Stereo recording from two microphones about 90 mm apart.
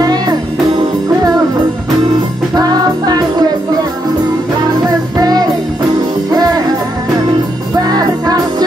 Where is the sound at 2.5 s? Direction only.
45° right (ahead or behind).